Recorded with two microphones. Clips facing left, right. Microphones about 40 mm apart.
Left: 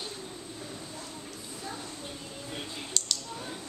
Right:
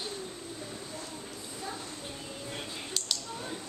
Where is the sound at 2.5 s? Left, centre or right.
Centre.